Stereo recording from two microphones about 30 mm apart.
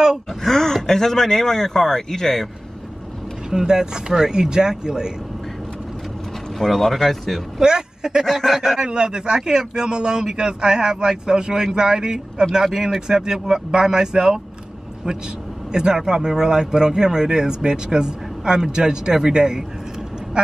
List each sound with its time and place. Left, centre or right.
0.3 s speech: centre
3.4 s a man's voice: centre
6.6 s speech: centre
7.6 s speech: right
8.8 s a man's voice: right